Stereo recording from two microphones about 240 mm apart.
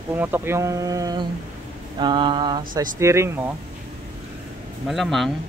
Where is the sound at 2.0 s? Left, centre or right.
Centre.